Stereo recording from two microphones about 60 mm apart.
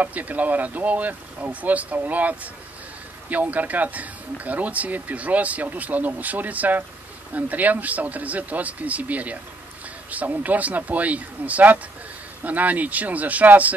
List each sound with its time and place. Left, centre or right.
0.0 s speech: right